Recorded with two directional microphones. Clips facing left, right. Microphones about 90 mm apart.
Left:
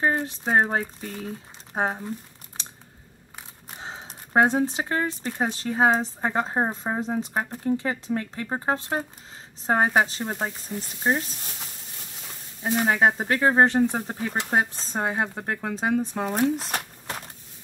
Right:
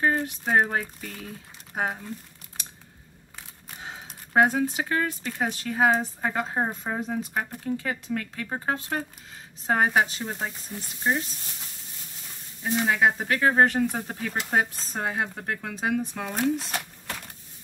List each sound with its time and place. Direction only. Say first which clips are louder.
0.0 s speech: left 1 dB; 25° left (ahead or behind)
3.8 s speech: left 2 dB; 30° left (ahead or behind)
12.6 s speech: left 2 dB; 35° left (ahead or behind)